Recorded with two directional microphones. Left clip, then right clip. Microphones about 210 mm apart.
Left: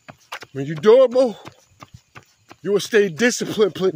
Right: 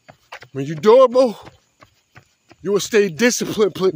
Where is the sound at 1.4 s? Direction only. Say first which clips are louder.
Left 3 dB; 55° left (ahead or behind).